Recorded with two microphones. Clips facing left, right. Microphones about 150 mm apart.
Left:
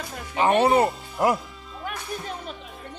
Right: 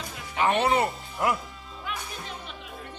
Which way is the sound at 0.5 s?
45° left (ahead or behind).